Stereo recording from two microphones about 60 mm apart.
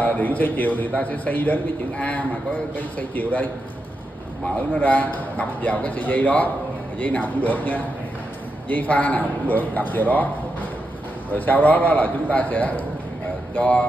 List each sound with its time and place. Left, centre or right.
0.0 s a man's voice: left
4.7 s a man's voice: left